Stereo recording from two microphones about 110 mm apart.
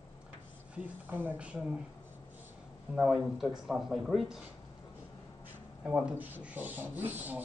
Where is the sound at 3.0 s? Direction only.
Centre (ahead or behind).